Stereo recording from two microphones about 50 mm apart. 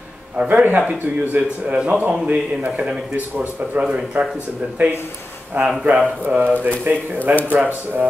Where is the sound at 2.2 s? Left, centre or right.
Right.